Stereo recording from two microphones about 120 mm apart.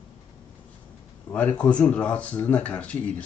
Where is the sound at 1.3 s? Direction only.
10° left (ahead or behind).